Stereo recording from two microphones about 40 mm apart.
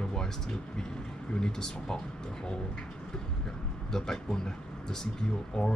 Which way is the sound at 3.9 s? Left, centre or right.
Centre.